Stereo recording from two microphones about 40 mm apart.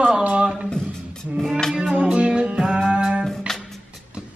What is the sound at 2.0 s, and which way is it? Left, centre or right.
Music, right.